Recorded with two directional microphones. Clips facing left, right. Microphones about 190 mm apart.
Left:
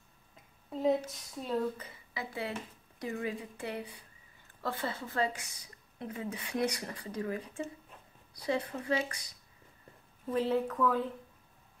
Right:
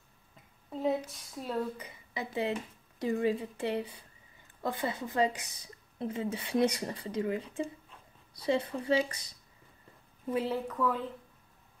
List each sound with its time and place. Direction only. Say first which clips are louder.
0.7 s a woman's voice: left 2 dB; centre (ahead or behind)
1.8 s speech: right 3 dB; 20° right (ahead or behind)
10.2 s a woman's voice: left 2 dB; 5° right (ahead or behind)